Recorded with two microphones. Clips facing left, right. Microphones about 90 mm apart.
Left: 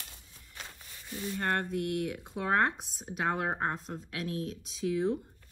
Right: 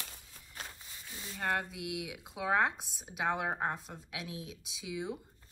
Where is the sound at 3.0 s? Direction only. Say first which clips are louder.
Left 2 dB; 40° left (ahead or behind).